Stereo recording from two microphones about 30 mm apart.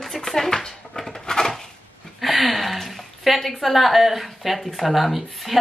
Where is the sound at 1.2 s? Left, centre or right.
Left.